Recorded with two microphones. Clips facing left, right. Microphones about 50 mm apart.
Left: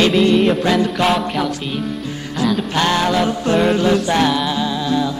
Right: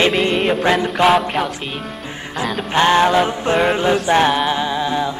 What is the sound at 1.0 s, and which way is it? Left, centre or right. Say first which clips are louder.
Music: right 3 dB; centre.